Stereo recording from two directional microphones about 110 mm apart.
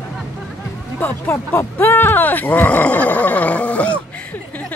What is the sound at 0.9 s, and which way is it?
Speech, 20° left (ahead or behind).